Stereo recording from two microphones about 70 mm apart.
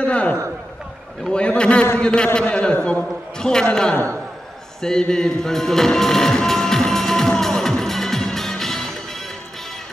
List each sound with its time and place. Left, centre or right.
0.0 s a sound: centre
1.3 s a man's voice: centre
4.8 s music: centre